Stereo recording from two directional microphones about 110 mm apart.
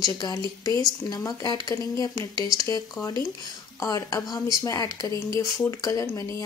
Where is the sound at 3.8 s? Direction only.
30° left (ahead or behind).